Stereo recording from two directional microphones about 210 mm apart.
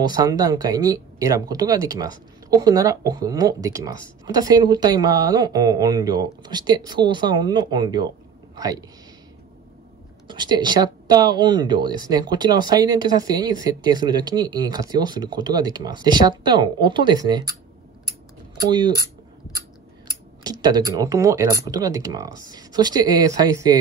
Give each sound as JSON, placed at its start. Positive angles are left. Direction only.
{"t": 0.0, "sound": "speech", "side_deg": -20}
{"t": 10.2, "sound": "speech", "side_deg": -20}
{"t": 18.7, "sound": "speech", "side_deg": -20}
{"t": 20.4, "sound": "speech", "side_deg": -20}